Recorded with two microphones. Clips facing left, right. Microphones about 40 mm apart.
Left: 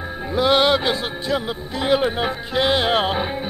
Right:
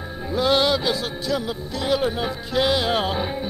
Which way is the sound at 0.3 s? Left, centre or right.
Left.